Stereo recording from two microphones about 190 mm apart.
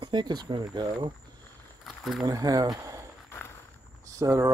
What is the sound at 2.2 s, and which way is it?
Speech, 20° right (ahead or behind).